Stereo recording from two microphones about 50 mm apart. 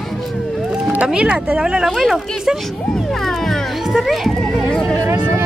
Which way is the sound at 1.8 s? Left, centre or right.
Centre.